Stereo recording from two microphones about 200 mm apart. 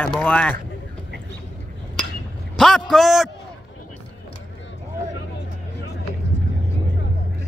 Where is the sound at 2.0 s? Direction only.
5° left (ahead or behind).